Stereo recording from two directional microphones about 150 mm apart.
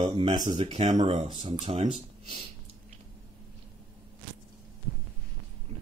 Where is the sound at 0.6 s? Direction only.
50° right (ahead or behind).